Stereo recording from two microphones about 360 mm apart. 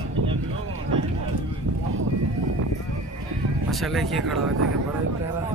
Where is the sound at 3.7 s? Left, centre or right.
Centre.